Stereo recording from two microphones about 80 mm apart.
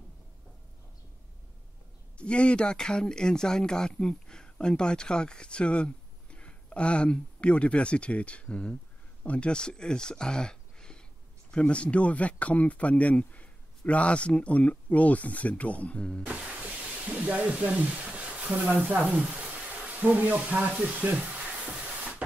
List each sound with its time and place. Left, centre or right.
2.1 s speech: centre
16.3 s speech: centre
19.1 s a sound: centre